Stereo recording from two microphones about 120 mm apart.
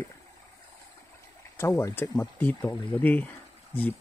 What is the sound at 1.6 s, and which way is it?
Speech, 20° left (ahead or behind).